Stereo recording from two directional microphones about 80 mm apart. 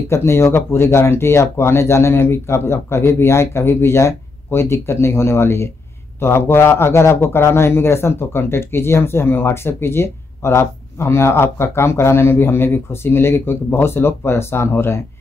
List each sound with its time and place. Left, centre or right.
0.1 s a man's voice: left